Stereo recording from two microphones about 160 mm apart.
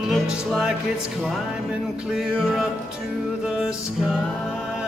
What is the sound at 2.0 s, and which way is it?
Music, centre (ahead or behind).